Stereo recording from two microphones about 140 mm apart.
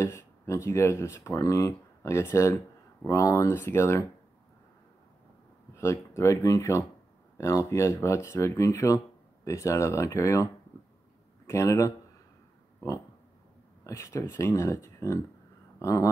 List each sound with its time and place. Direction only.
0.0 s speech: 20° left (ahead or behind)
5.8 s speech: 20° left (ahead or behind)
13.8 s speech: 20° left (ahead or behind)